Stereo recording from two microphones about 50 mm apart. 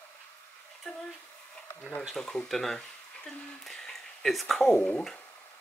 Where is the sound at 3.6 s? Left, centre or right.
Centre.